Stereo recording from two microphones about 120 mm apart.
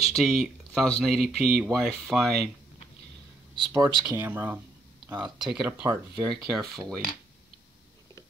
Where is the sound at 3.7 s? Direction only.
25° right (ahead or behind).